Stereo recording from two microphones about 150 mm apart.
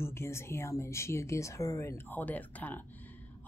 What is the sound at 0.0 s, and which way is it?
Speech, 15° left (ahead or behind).